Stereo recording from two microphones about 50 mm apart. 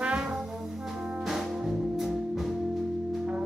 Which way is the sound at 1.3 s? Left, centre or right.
Centre.